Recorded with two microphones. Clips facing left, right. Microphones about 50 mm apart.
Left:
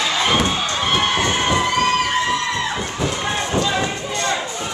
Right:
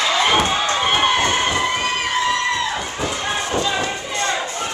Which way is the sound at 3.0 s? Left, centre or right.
Centre.